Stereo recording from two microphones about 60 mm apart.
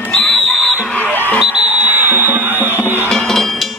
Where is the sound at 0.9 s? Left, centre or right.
Left.